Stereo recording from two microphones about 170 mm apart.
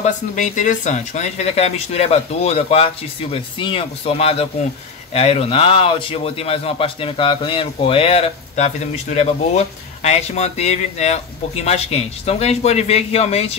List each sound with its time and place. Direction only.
0.0 s a man's voice: 45° left (ahead or behind)